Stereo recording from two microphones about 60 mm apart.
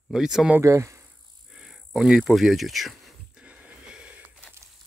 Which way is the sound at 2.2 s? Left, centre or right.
Centre.